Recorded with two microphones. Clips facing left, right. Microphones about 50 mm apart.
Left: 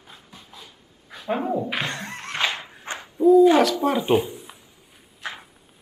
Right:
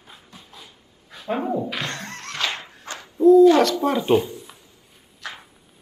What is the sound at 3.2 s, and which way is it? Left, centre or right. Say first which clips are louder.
Owl: right 2 dB; centre.